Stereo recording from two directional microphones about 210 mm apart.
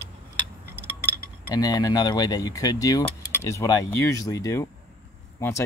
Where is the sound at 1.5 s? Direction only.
15° left (ahead or behind).